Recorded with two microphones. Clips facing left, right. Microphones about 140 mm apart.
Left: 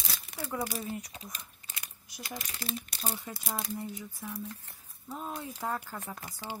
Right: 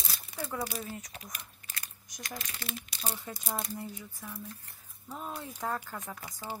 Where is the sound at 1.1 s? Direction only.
25° left (ahead or behind).